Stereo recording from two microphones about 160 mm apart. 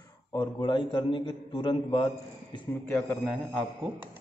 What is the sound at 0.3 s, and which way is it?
A man's voice, 25° left (ahead or behind).